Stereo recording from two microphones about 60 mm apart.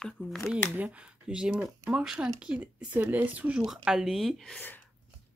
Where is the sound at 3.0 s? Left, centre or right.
Right.